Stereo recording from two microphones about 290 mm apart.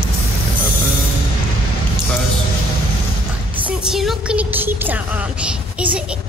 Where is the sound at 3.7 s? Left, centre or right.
Centre.